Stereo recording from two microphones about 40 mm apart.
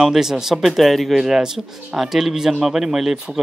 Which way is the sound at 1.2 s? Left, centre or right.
Centre.